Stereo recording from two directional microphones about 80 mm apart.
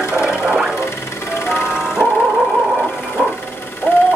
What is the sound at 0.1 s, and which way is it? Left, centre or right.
Music, centre.